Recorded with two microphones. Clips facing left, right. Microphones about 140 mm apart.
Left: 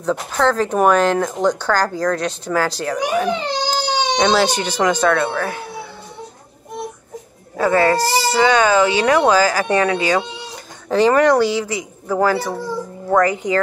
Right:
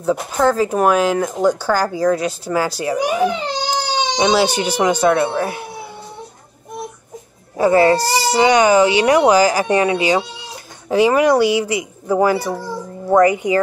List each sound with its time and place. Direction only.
0.0 s speech: 10° right (ahead or behind)
7.5 s speech: 20° right (ahead or behind)